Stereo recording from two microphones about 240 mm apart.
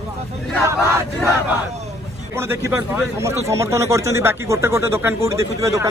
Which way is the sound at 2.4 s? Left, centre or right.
Centre.